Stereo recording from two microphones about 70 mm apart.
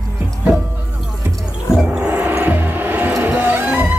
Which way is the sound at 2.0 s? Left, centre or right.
Right.